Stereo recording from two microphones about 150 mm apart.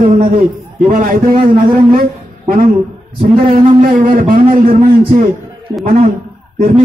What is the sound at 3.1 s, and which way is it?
Speech, 35° right (ahead or behind).